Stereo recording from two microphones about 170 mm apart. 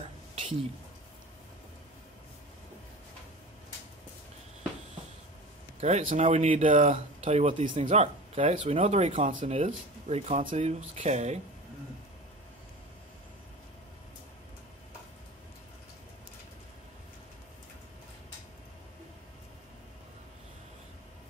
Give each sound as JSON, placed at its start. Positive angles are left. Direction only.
{"t": 5.8, "sound": "speech", "side_deg": -40}